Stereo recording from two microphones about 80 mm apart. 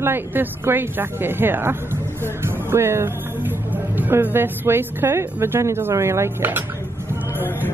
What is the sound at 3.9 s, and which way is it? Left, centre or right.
A woman's voice, right.